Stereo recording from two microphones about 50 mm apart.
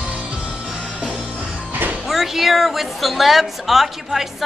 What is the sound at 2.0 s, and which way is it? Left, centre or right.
A woman's voice, centre.